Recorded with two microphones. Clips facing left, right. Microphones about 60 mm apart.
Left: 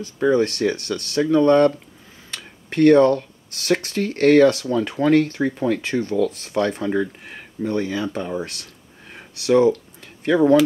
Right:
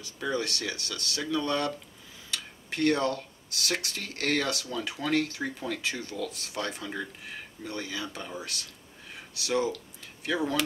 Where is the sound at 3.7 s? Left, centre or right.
Left.